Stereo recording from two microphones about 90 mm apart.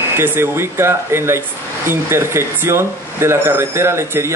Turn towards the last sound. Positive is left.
turn(degrees=-30)  # may be behind; listen again after turning